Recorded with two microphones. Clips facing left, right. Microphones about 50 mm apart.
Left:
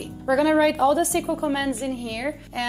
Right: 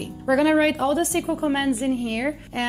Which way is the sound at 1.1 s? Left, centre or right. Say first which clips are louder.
Right 1 dB; right.